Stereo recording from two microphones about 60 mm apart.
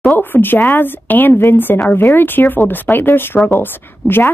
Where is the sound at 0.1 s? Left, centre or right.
Left.